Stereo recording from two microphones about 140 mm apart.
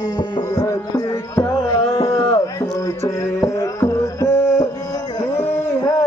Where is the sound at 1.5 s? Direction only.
35° left (ahead or behind).